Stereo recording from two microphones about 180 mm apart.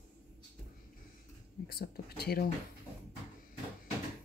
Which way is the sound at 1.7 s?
60° left (ahead or behind).